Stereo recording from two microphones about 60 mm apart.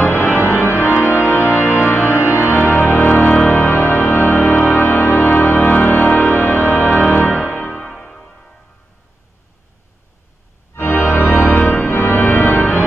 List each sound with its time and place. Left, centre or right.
0.0 s organ: left
2.3 s music: left
6.3 s music: left
7.7 s music: centre
10.7 s organ: left